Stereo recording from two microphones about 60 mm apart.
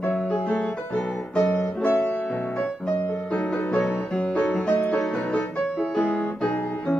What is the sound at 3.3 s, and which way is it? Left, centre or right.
Music, centre.